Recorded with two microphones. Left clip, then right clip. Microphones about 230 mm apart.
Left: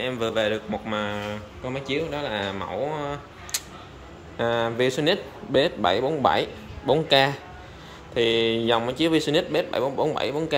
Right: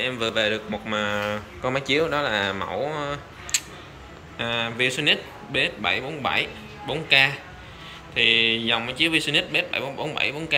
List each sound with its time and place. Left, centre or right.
0.0 s a man's voice: centre